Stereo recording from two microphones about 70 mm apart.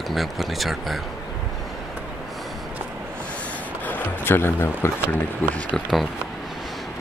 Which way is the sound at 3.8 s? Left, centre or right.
Left.